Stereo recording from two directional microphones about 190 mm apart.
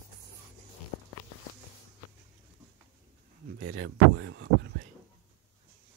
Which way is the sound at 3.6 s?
80° right.